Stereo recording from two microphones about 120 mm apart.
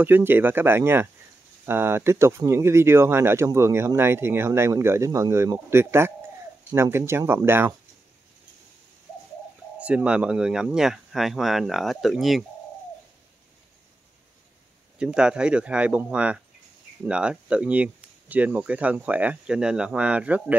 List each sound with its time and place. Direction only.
0.0 s speech: 15° right (ahead or behind)
9.8 s speech: 10° right (ahead or behind)
15.0 s speech: 10° right (ahead or behind)